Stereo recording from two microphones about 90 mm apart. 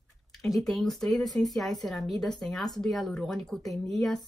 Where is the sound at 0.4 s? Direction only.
Centre (ahead or behind).